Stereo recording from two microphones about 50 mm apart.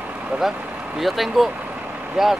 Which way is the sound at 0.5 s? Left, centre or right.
Right.